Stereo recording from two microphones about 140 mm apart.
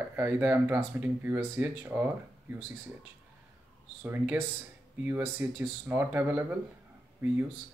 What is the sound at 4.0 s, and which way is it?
Speech, 15° right (ahead or behind).